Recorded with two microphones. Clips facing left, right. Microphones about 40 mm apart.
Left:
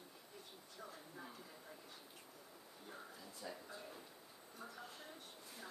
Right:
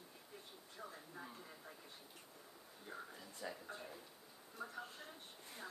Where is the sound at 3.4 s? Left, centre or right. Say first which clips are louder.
Right 3 dB; right.